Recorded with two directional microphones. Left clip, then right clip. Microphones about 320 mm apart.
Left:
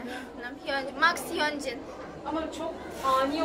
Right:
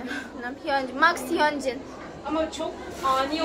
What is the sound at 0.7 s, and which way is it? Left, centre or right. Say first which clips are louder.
A woman's voice: right 4 dB; centre.